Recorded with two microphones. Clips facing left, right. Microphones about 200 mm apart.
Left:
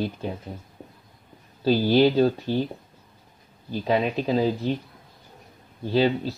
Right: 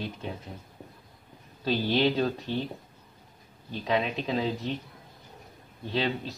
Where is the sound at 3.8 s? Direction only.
35° left (ahead or behind).